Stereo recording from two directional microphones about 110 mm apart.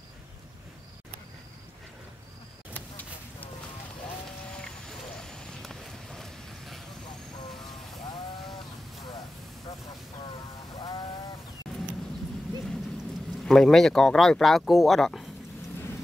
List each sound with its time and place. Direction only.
4.6 s a sound: 5° left (ahead or behind)
10.8 s sheep: 40° left (ahead or behind)
13.5 s speech: 5° left (ahead or behind)